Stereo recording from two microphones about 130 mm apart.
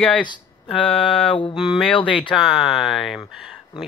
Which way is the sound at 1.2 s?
45° left (ahead or behind).